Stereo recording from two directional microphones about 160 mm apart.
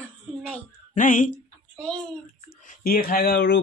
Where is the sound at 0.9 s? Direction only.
55° left (ahead or behind).